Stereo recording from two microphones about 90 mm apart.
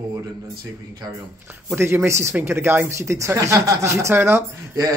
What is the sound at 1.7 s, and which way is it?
Speech, 30° right (ahead or behind).